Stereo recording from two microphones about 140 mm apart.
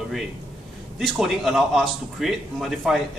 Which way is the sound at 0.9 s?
Centre (ahead or behind).